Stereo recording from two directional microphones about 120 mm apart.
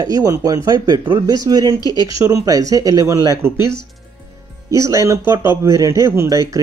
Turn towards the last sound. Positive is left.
turn(degrees=-30)  # may be behind; listen again after turning